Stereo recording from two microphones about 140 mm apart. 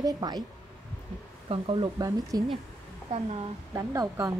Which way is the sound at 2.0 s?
30° right (ahead or behind).